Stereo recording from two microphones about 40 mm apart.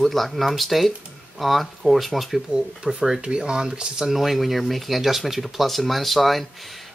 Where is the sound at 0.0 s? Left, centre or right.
Centre.